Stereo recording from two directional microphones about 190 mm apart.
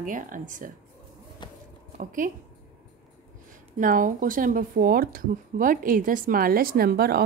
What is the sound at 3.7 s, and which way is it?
Speech, 45° right (ahead or behind).